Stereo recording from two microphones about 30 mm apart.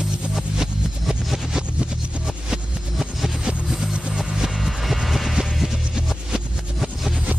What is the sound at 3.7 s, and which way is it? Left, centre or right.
Music, centre.